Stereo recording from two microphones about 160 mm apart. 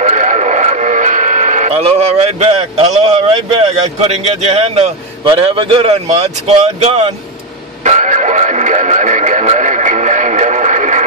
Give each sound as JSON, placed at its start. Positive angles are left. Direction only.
{"t": 0.0, "sound": "radio", "side_deg": -50}
{"t": 1.7, "sound": "speech", "side_deg": -40}
{"t": 7.8, "sound": "radio", "side_deg": -50}